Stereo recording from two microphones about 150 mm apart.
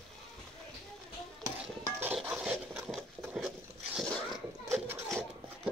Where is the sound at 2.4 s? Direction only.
5° right (ahead or behind).